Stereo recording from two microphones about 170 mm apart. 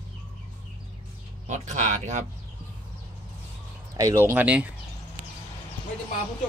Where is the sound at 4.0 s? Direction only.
20° right (ahead or behind).